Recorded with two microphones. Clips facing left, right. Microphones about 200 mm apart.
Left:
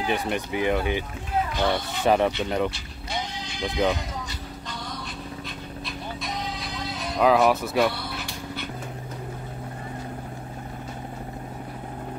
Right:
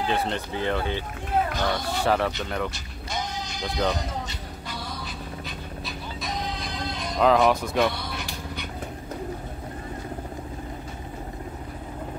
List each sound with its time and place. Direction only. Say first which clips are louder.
0.0 s speech: even; 15° left (ahead or behind)
2.7 s music: left 1 dB; 45° right (ahead or behind)
5.9 s music: even; centre (ahead or behind)